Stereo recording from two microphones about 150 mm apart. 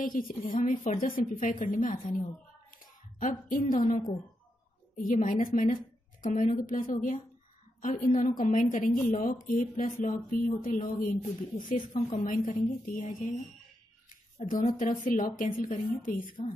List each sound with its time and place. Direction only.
0.0 s a woman's voice: 65° left (ahead or behind)
14.0 s a sound: 60° left (ahead or behind)
14.7 s a woman's voice: 65° left (ahead or behind)
16.4 s a woman's voice: 40° left (ahead or behind)